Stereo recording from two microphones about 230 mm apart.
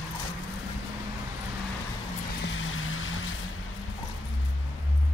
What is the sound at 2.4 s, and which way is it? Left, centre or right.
Vehicle, left.